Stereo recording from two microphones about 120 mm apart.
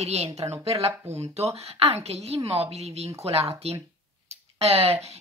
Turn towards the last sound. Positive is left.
turn(degrees=-60)  # may be behind; listen again after turning